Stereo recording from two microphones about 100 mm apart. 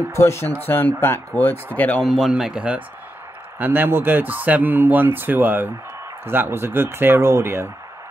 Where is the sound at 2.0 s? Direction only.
Centre (ahead or behind); by 7.7 s 25° right (ahead or behind).